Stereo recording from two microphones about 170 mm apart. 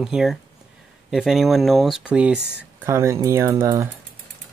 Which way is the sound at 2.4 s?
80° right.